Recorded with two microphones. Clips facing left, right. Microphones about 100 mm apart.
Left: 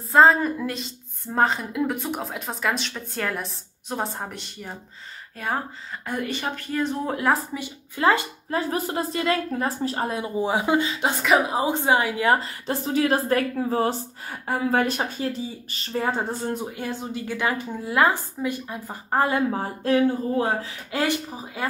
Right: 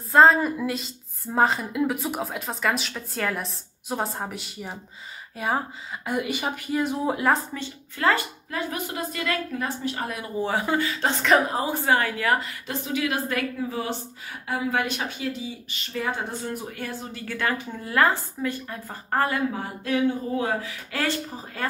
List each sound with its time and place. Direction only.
0.1 s a woman's voice: centre (ahead or behind)
7.5 s speech: 15° left (ahead or behind)
8.5 s a woman's voice: 35° left (ahead or behind)
10.3 s speech: 15° left (ahead or behind)
12.3 s a woman's voice: 35° left (ahead or behind)
16.5 s speech: 20° left (ahead or behind)
19.5 s a woman's voice: 35° left (ahead or behind)
20.9 s speech: 15° left (ahead or behind)